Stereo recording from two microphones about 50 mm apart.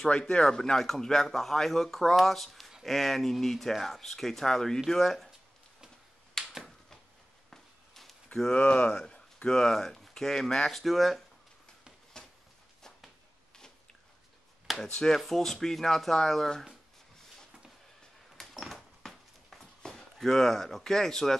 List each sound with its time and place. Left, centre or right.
0.0 s a man's voice: centre
6.4 s finger snapping: centre
7.5 s walk: centre
8.5 s speech: left; by 11.2 s centre
12.2 s a sound: centre
14.8 s a man's voice: centre
18.4 s a sound: centre